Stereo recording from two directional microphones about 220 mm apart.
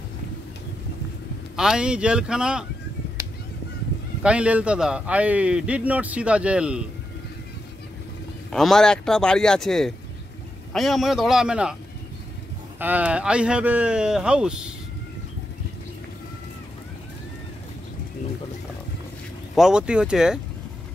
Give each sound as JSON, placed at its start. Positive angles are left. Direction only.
{"t": 1.6, "sound": "a man's voice", "side_deg": -5}
{"t": 4.2, "sound": "a man's voice", "side_deg": -5}
{"t": 8.5, "sound": "a man's voice", "side_deg": 0}
{"t": 12.7, "sound": "a man's voice", "side_deg": -10}
{"t": 19.5, "sound": "a man's voice", "side_deg": -5}